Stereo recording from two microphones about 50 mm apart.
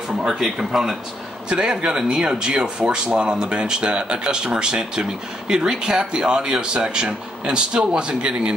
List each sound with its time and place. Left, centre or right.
0.3 s speech: centre
1.5 s speech: centre